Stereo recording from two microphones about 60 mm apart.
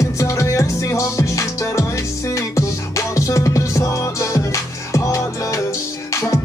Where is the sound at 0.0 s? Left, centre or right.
Left.